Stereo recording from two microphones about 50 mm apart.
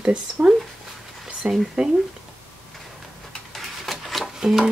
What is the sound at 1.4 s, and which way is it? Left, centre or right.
Speech, centre.